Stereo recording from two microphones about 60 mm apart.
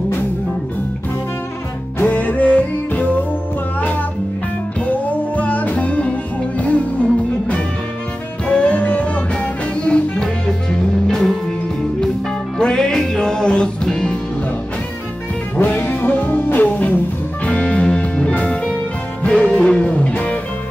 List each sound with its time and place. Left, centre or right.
2.0 s music: left
4.8 s music: left
11.1 s music: centre
12.5 s music: centre
15.6 s music: left